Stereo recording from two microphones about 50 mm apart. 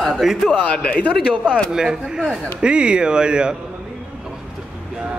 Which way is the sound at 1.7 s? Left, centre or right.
Centre.